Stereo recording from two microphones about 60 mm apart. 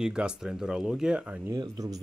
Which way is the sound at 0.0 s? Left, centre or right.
Centre.